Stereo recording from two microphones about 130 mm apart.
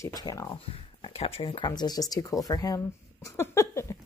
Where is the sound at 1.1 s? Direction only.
50° left (ahead or behind); by 3.8 s 20° left (ahead or behind).